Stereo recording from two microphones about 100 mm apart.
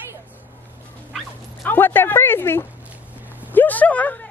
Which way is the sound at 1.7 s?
20° left (ahead or behind).